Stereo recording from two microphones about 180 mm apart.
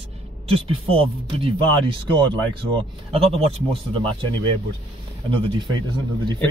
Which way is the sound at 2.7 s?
30° right (ahead or behind).